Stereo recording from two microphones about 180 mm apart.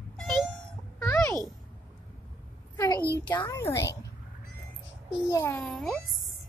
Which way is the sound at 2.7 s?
15° left (ahead or behind).